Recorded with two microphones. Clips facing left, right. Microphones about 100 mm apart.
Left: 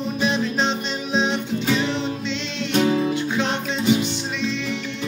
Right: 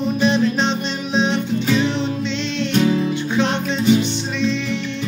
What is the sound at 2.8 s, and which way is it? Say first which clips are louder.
Music: even; 15° left (ahead or behind).